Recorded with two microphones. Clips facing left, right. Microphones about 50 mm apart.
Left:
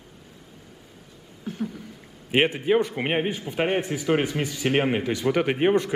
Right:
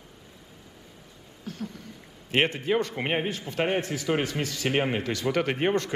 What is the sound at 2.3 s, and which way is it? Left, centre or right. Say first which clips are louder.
A man's voice: left 4 dB; centre.